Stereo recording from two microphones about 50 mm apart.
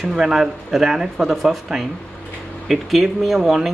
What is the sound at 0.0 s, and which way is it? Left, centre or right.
Speech, centre.